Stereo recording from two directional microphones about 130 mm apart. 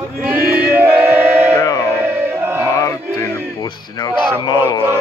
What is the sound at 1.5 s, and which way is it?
Music, 30° left (ahead or behind).